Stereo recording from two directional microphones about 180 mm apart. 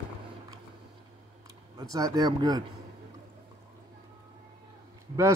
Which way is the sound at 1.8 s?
20° right (ahead or behind).